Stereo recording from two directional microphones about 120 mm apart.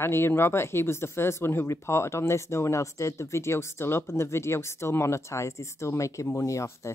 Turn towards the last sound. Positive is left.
turn(degrees=25)  # may be behind; listen again after turning